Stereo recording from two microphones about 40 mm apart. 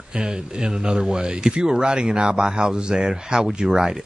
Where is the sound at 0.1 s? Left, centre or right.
Centre.